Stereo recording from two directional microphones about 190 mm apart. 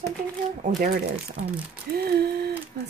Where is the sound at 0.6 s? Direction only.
50° right (ahead or behind).